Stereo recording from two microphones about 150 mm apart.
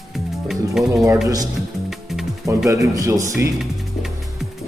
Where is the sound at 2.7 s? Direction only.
20° right (ahead or behind).